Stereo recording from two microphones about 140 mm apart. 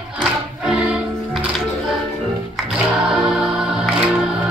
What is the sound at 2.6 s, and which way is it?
Music, 5° right (ahead or behind).